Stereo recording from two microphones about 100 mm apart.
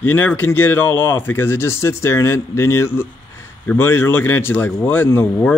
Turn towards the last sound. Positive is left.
turn(degrees=20)  # may be behind; listen again after turning